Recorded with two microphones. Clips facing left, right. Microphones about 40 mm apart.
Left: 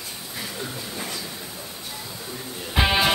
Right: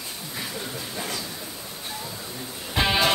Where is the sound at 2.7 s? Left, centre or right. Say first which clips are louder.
Left 1 dB; centre.